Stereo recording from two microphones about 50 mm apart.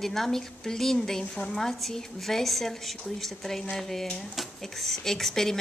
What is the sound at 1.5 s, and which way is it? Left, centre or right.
A woman's voice, centre.